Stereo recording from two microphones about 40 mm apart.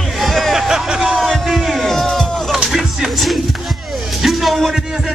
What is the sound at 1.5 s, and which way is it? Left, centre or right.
Music, centre.